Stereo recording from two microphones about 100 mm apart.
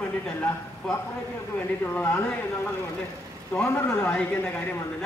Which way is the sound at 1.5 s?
15° left (ahead or behind).